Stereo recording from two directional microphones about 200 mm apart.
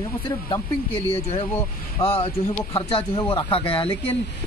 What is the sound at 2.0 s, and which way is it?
Speech, 30° left (ahead or behind).